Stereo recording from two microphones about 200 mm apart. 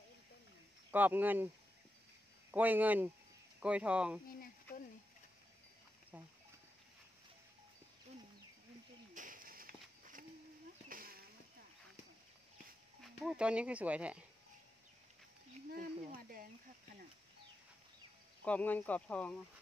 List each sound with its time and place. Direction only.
0.9 s speech: 10° right (ahead or behind)
2.5 s speech: 10° right (ahead or behind)
6.1 s speech: 5° right (ahead or behind)
9.1 s a sound: 40° right (ahead or behind)
13.0 s speech: centre (ahead or behind)
15.7 s a sound: 45° right (ahead or behind)
18.4 s speech: 5° left (ahead or behind)